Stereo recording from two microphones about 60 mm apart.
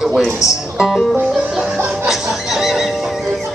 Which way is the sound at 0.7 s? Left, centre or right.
Centre.